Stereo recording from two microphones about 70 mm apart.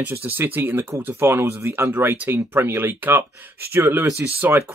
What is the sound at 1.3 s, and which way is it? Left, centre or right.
Speech, right.